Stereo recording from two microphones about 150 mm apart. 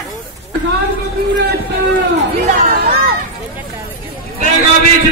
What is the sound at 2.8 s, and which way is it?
Run, 85° right.